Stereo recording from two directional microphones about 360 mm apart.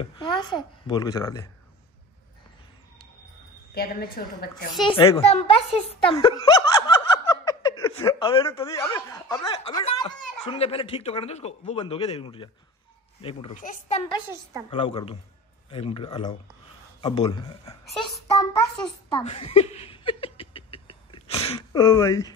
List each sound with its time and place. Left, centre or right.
0.0 s a woman's voice: centre
3.7 s a woman's voice: left
4.8 s speech: centre
18.8 s a sound: centre